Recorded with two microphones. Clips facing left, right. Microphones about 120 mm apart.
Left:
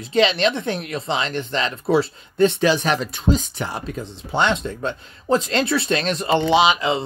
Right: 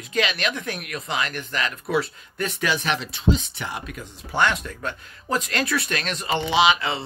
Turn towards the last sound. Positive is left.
turn(degrees=25)  # may be behind; listen again after turning